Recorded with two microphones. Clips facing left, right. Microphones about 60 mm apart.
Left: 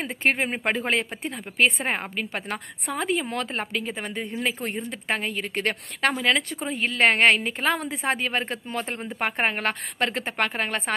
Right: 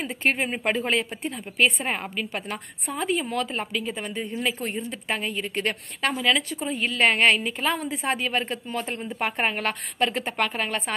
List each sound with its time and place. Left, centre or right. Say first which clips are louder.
0.3 s a woman's voice: even; left
4.6 s a woman's voice: left 1 dB; left
8.0 s a woman's voice: even; left